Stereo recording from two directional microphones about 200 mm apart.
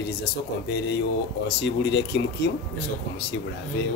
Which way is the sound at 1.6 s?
60° left (ahead or behind).